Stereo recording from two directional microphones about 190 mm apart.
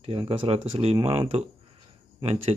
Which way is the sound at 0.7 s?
30° right (ahead or behind).